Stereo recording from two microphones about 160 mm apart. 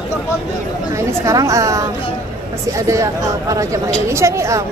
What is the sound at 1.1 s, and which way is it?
A woman's voice, 20° right (ahead or behind).